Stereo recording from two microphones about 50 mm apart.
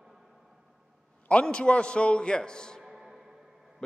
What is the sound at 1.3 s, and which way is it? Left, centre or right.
A man's voice, left.